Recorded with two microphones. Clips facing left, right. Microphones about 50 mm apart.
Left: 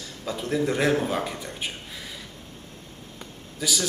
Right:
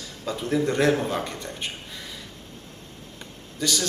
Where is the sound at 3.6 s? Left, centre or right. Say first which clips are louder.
Right 2 dB; centre.